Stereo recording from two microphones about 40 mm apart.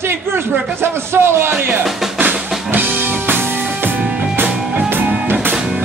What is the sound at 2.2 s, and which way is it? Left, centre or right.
Music, right.